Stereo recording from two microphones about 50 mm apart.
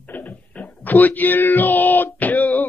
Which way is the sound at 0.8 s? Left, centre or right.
Left.